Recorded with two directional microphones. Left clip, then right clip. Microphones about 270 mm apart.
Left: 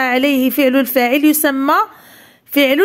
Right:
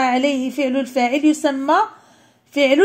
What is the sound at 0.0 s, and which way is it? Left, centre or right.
A woman's voice, left.